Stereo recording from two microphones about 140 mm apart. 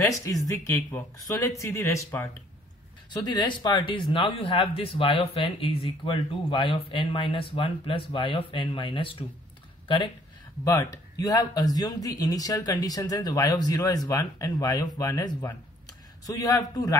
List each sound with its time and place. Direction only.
0.1 s a man's voice: 25° left (ahead or behind)
3.1 s speech: 30° left (ahead or behind)
10.6 s a man's voice: 25° left (ahead or behind)